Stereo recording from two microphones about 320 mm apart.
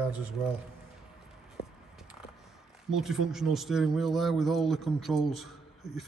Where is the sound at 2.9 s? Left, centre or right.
Centre.